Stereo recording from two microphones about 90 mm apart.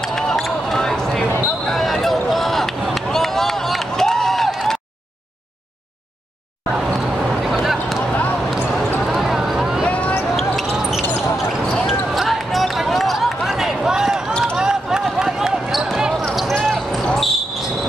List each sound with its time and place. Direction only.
0.0 s a sound: 5° left (ahead or behind)
1.7 s run: 5° left (ahead or behind)
7.4 s a sound: 5° right (ahead or behind)
8.1 s basketball bounce: 15° left (ahead or behind)
8.5 s basketball bounce: centre (ahead or behind)
9.0 s vehicle: 5° right (ahead or behind)
9.8 s basketball bounce: 15° left (ahead or behind)
10.3 s basketball bounce: centre (ahead or behind)